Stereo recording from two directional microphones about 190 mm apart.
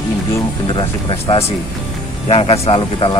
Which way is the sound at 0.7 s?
30° left (ahead or behind).